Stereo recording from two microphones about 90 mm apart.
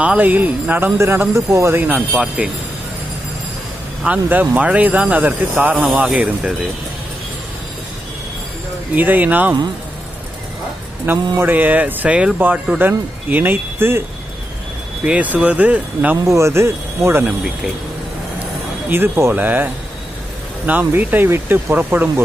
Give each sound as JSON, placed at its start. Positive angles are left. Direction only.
{"t": 0.0, "sound": "speech", "side_deg": -15}
{"t": 0.9, "sound": "speech", "side_deg": -30}
{"t": 2.0, "sound": "speech", "side_deg": -10}
{"t": 4.0, "sound": "speech", "side_deg": -15}
{"t": 8.9, "sound": "speech", "side_deg": -20}
{"t": 11.1, "sound": "speech", "side_deg": -20}
{"t": 15.0, "sound": "speech", "side_deg": -15}
{"t": 16.3, "sound": "speech", "side_deg": -30}
{"t": 18.9, "sound": "speech", "side_deg": -25}